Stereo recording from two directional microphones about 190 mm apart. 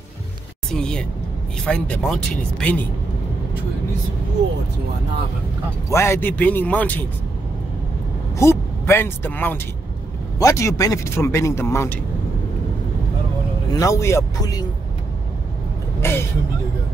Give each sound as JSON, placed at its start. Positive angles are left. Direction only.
{"t": 0.7, "sound": "speech", "side_deg": 5}
{"t": 5.9, "sound": "speech", "side_deg": 15}
{"t": 8.4, "sound": "speech", "side_deg": 15}
{"t": 13.7, "sound": "speech", "side_deg": 15}
{"t": 16.0, "sound": "vehicle", "side_deg": 10}